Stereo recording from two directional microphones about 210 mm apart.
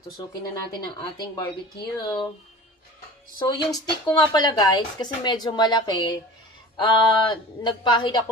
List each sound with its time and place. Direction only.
0.7 s speech: 20° left (ahead or behind)
3.3 s speech: 20° left (ahead or behind)